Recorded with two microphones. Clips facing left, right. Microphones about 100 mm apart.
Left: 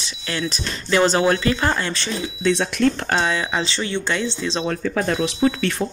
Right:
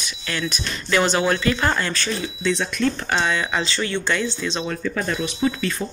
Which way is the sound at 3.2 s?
30° left (ahead or behind).